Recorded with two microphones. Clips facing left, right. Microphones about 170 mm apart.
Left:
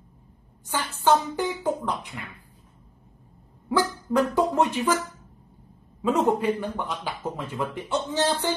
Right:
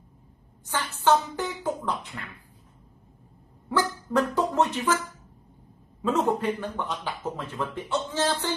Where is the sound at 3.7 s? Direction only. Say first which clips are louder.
Left 2 dB; 10° left (ahead or behind).